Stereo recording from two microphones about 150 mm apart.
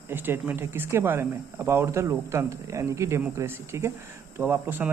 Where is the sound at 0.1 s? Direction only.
15° right (ahead or behind).